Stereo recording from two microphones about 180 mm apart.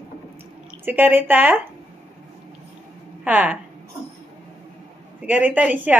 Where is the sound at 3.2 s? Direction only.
10° right (ahead or behind).